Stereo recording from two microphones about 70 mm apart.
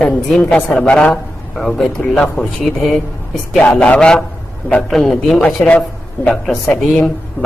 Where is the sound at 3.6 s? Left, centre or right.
Centre.